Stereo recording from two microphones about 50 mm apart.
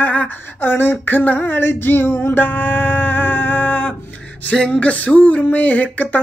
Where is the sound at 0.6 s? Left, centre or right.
Left.